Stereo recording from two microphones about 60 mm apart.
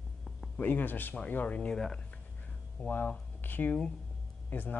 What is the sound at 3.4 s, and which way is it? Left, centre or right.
Speech, left.